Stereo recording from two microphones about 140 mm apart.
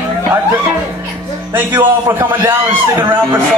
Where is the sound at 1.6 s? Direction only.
15° right (ahead or behind).